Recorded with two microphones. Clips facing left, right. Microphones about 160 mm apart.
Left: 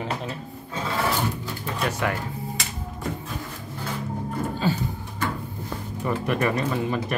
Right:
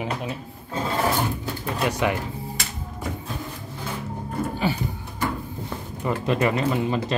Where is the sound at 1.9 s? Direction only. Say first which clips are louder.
Right 3 dB; 15° right (ahead or behind).